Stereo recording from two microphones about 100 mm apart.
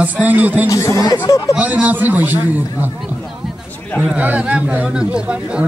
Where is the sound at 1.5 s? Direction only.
15° right (ahead or behind).